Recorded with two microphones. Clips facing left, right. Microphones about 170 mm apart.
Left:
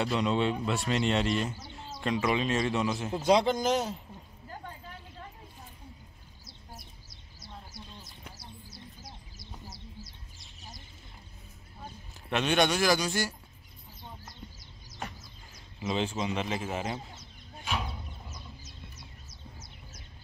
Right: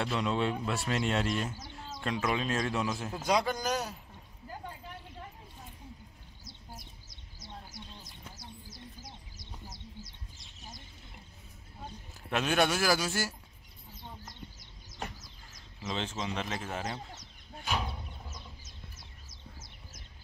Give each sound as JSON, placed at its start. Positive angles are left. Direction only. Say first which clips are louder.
{"t": 0.0, "sound": "speech", "louder": "left 3 dB", "side_deg": 0}
{"t": 3.1, "sound": "speech", "louder": "left 7 dB", "side_deg": 25}
{"t": 9.0, "sound": "bird", "louder": "left 1 dB", "side_deg": -20}
{"t": 12.3, "sound": "speech", "louder": "left 2 dB", "side_deg": 0}
{"t": 15.9, "sound": "speech", "louder": "left 5 dB", "side_deg": 10}